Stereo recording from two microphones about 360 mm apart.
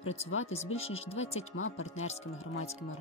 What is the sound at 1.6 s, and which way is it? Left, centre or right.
Speech, left.